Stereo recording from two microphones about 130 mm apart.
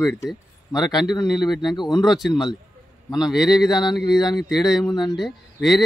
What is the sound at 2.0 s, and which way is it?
Speech, centre (ahead or behind).